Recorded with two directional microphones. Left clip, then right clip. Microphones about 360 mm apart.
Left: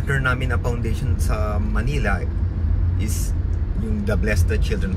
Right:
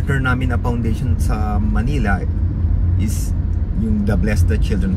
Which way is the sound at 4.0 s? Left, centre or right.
Centre.